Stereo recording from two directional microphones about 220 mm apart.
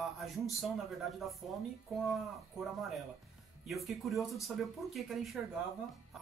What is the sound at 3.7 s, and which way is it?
Speech, centre (ahead or behind).